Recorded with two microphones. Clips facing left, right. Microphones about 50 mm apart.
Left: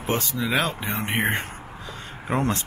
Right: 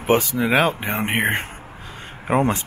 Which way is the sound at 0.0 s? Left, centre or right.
Right.